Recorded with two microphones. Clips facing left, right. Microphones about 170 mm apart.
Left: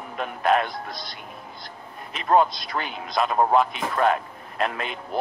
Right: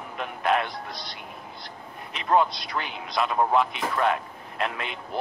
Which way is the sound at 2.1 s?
45° left (ahead or behind).